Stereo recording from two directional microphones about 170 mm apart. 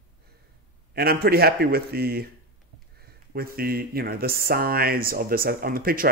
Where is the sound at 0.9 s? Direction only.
65° right (ahead or behind).